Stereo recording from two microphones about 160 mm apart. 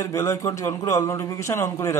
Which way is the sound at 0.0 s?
20° left (ahead or behind).